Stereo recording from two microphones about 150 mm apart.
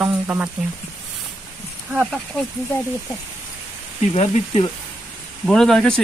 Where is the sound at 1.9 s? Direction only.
5° right (ahead or behind).